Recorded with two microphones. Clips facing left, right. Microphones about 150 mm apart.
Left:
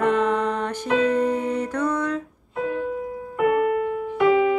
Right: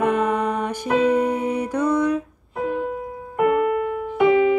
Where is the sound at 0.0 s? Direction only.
10° right (ahead or behind).